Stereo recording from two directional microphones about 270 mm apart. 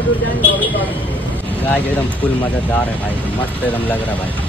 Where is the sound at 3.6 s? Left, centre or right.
Centre.